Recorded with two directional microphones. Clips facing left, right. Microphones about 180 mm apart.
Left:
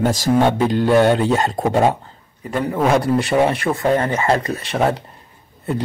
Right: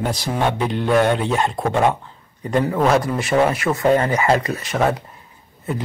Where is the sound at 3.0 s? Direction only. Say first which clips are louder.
Left 3 dB; 35° left (ahead or behind).